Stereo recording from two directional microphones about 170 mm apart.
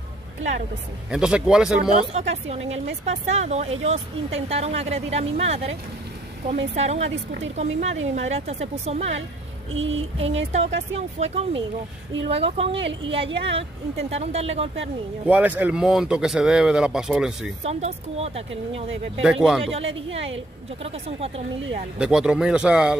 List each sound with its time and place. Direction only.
1.1 s speech: 5° right (ahead or behind)
2.0 s speech: 40° right (ahead or behind)
15.2 s speech: 10° right (ahead or behind)
17.6 s speech: 40° right (ahead or behind)
19.2 s speech: 5° right (ahead or behind)
19.6 s speech: 35° right (ahead or behind)
21.9 s speech: 5° right (ahead or behind)